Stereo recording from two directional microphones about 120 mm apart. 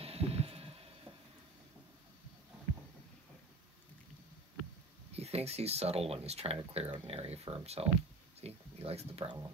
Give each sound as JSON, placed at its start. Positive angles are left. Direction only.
{"t": 0.0, "sound": "heart sounds", "side_deg": -55}
{"t": 5.1, "sound": "speech", "side_deg": -60}
{"t": 8.4, "sound": "a sound", "side_deg": -55}